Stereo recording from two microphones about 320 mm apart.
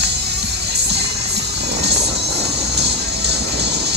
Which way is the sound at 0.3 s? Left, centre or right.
Right.